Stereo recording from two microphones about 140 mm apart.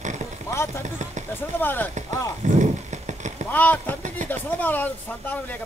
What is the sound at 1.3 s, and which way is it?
Speech, 15° left (ahead or behind).